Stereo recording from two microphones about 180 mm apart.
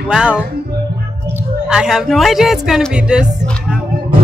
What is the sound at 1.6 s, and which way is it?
Speech, 5° right (ahead or behind).